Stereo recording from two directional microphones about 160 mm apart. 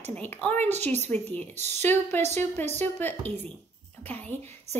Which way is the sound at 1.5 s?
45° right (ahead or behind).